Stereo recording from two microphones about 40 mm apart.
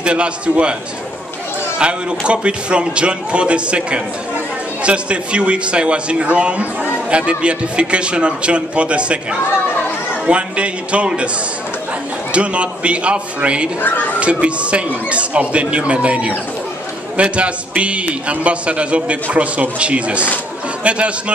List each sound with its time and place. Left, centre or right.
0.0 s a man's voice: right
1.8 s a man's voice: right
12.3 s a man's voice: right
13.7 s a child's voice: left
14.2 s speech: right